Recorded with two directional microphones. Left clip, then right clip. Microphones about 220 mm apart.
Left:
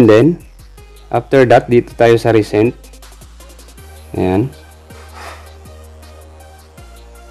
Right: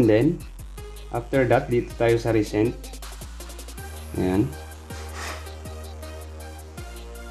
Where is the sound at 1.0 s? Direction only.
55° left (ahead or behind).